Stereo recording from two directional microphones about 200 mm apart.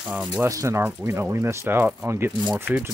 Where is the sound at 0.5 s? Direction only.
15° right (ahead or behind).